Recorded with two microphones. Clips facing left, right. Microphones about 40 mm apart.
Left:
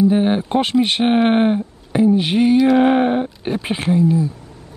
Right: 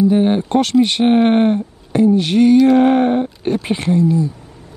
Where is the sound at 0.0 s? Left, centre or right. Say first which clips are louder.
Right 2 dB; centre.